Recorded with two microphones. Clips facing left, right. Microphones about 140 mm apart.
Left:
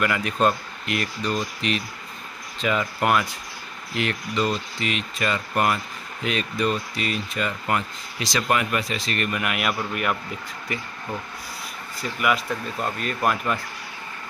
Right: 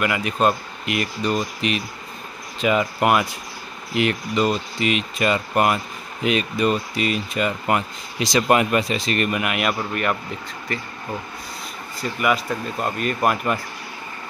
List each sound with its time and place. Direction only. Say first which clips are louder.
0.0 s speech: right 2 dB; 10° right (ahead or behind)
9.4 s speech: right 3 dB; centre (ahead or behind)
12.0 s speech: right 2 dB; centre (ahead or behind)
12.4 s speech: right 3 dB; 15° right (ahead or behind)